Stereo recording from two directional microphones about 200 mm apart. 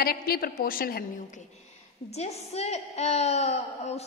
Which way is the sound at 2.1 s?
30° left (ahead or behind).